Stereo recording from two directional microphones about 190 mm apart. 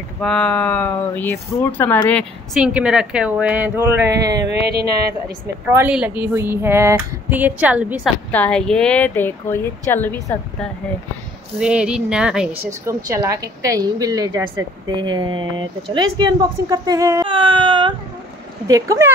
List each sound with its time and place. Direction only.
0.2 s speech: 5° left (ahead or behind)
2.6 s speech: 5° right (ahead or behind)
4.5 s speech: 60° right (ahead or behind)
5.7 s speech: 10° right (ahead or behind)
8.3 s speech: 5° left (ahead or behind)
11.6 s speech: 5° right (ahead or behind)
12.8 s speech: 15° right (ahead or behind)